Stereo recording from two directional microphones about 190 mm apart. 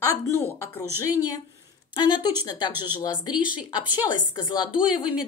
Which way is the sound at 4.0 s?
20° left (ahead or behind).